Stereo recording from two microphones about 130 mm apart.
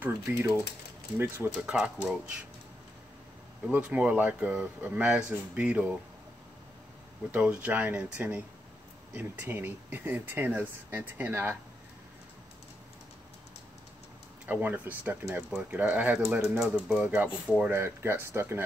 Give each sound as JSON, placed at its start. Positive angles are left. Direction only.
{"t": 0.0, "sound": "speech", "side_deg": -15}
{"t": 3.6, "sound": "speech", "side_deg": -10}
{"t": 7.2, "sound": "speech", "side_deg": -10}
{"t": 14.4, "sound": "speech", "side_deg": -15}